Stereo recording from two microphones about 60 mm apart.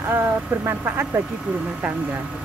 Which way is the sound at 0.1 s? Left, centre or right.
Right.